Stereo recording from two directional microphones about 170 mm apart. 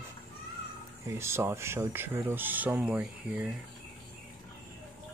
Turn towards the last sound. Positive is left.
turn(degrees=-5)  # may be behind; listen again after turning